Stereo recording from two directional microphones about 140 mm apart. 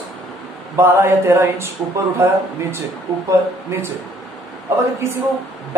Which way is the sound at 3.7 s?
20° right (ahead or behind).